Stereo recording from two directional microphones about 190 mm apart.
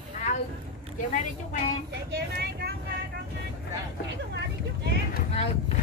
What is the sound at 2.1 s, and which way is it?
Speech, 60° right (ahead or behind).